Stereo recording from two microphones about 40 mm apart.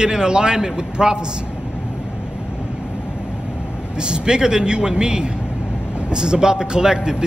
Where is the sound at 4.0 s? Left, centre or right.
Right.